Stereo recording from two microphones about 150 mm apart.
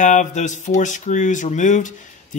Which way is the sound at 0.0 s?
55° left (ahead or behind).